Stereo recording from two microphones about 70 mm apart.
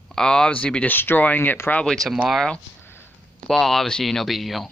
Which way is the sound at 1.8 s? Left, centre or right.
Centre.